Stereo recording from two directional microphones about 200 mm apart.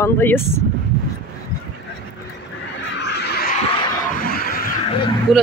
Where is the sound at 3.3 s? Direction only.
45° left (ahead or behind).